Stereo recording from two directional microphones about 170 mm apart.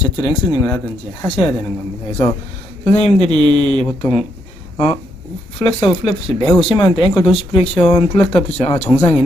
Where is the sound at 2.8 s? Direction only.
40° left (ahead or behind).